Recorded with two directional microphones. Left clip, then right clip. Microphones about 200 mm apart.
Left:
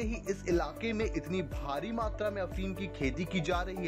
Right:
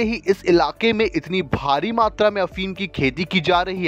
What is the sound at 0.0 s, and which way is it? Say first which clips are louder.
Speech: right 16 dB; 40° right (ahead or behind).